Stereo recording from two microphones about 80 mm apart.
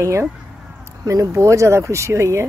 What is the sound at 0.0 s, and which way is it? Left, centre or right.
Speech, right.